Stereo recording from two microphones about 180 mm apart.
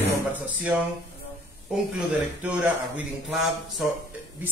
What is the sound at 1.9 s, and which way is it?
Speech, 10° right (ahead or behind).